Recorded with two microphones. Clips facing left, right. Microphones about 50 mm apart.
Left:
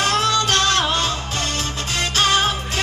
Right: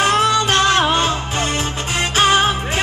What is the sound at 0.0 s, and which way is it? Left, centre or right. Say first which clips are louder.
Music: right 4 dB; right.